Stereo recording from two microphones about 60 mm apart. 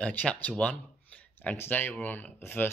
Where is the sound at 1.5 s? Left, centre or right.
Left.